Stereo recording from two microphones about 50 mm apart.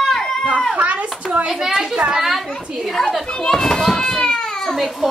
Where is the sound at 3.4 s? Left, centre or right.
Centre.